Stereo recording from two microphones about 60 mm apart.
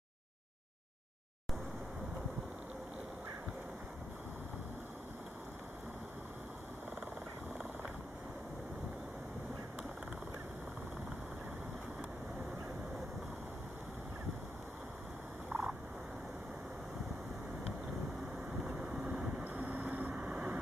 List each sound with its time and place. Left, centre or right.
15.5 s turkey: right
18.9 s vehicle: centre
19.4 s vehicle: right
20.2 s vehicle: centre